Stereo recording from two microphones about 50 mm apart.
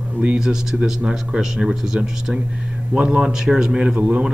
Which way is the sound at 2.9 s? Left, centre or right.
Right.